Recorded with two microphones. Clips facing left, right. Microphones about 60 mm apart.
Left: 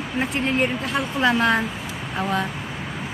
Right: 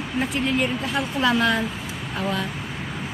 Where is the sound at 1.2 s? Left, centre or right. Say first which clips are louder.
Left 2 dB; left.